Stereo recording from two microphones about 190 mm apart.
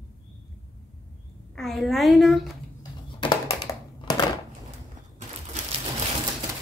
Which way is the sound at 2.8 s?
20° left (ahead or behind).